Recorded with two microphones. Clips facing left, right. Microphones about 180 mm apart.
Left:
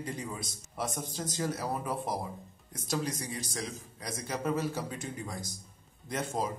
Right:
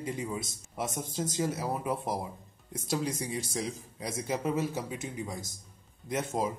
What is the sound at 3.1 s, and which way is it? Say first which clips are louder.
Speech: right 3 dB; 25° right (ahead or behind).